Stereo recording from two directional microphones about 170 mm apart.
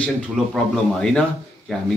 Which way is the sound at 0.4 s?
5° right (ahead or behind).